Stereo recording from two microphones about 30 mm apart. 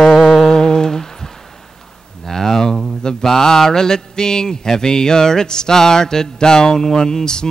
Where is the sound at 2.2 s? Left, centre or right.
Centre.